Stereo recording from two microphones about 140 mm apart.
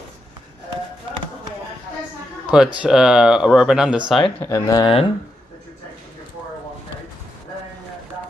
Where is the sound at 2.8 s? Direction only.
5° right (ahead or behind).